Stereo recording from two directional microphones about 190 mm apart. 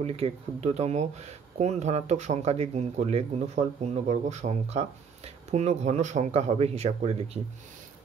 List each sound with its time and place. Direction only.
0.0 s speech: 30° right (ahead or behind)